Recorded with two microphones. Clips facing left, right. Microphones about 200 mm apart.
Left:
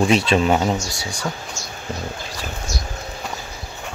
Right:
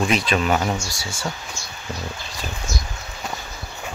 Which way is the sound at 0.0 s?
30° left (ahead or behind).